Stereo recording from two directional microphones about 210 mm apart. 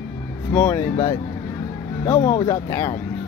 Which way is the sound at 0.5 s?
10° left (ahead or behind).